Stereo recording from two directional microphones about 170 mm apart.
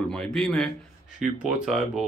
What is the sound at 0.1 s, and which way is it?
Speech, 5° left (ahead or behind).